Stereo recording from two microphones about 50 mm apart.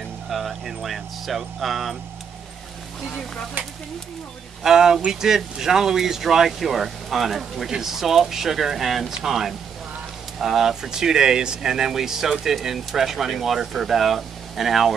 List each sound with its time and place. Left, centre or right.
0.3 s speech: centre
3.6 s speech: right
4.6 s speech: centre